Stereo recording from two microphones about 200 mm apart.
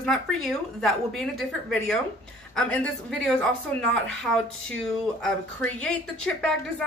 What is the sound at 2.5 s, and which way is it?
Speech, 5° left (ahead or behind).